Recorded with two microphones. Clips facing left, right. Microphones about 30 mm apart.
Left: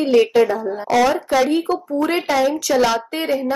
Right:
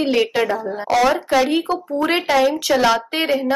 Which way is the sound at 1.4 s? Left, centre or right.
Right.